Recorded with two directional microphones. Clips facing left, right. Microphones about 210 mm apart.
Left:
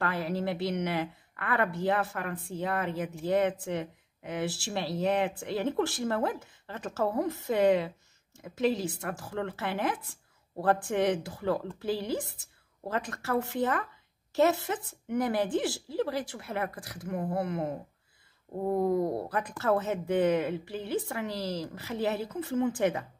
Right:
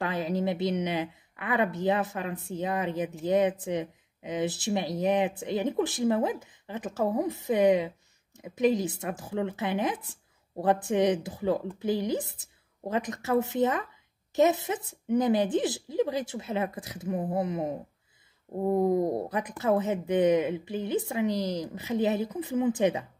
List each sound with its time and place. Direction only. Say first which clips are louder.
0.0 s a woman's voice: right 2 dB; 20° right (ahead or behind)